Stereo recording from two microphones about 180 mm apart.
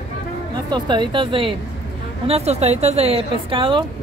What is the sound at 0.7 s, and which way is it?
Speech, 25° right (ahead or behind).